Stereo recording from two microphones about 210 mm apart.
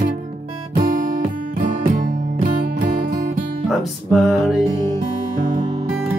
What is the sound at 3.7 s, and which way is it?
Music, centre (ahead or behind).